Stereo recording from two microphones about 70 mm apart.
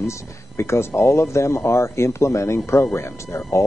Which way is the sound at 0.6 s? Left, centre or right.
Left.